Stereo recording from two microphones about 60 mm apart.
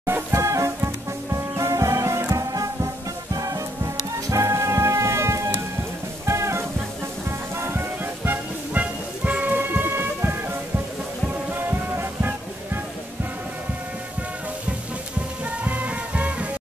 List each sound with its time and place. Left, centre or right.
0.0 s music: right
3.3 s music: right
8.7 s music: right
11.5 s music: right
15.6 s music: right